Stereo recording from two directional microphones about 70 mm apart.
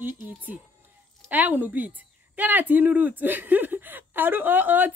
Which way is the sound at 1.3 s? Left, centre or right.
Right.